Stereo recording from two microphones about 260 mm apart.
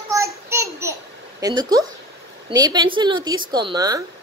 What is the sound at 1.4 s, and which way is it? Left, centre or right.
A woman's voice, centre.